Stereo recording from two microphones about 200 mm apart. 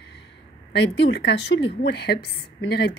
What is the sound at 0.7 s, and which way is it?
A woman's voice, 60° left (ahead or behind).